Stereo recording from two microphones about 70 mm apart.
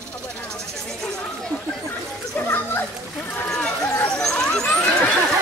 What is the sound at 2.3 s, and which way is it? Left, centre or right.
Speech, left.